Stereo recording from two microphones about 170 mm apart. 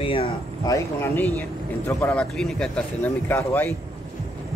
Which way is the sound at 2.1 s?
5° left (ahead or behind).